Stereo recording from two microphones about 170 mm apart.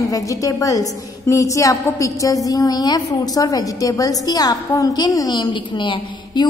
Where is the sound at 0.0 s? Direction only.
20° left (ahead or behind).